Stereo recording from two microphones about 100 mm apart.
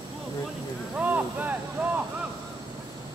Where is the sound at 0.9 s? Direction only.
15° right (ahead or behind).